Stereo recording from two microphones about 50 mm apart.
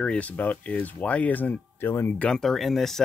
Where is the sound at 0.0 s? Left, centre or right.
Centre.